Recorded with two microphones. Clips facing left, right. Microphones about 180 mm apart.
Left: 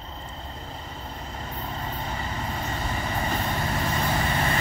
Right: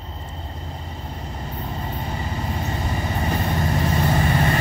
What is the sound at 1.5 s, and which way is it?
Vehicle, 25° right (ahead or behind).